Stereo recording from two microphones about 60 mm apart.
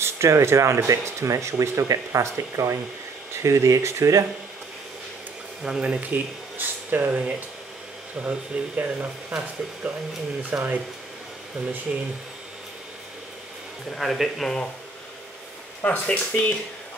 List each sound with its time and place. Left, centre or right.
0.0 s speech: right
5.6 s speech: centre
11.9 s speech: centre
13.8 s speech: centre
15.8 s speech: left